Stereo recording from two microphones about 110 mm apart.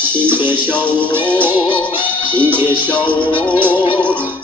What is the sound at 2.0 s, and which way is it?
Speech, 20° right (ahead or behind).